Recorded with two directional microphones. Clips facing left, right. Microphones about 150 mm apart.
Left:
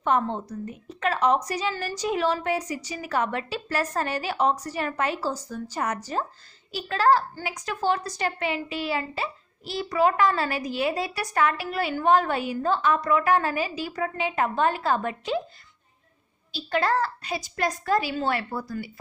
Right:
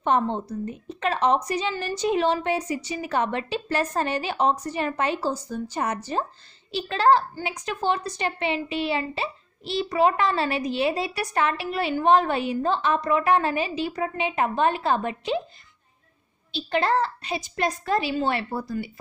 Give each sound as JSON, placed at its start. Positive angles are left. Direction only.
{"t": 0.0, "sound": "a woman's voice", "side_deg": -25}
{"t": 16.5, "sound": "a woman's voice", "side_deg": -20}